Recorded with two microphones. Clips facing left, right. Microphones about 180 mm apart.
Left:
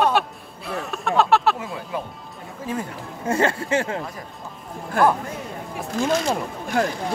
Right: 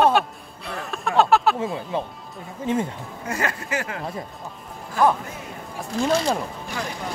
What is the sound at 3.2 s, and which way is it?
Speech, 30° left (ahead or behind).